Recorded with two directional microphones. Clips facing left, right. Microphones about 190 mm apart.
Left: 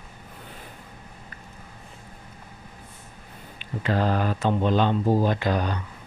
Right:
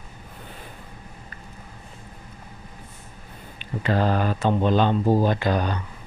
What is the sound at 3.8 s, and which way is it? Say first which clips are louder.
Speech: right 2 dB; 40° right (ahead or behind).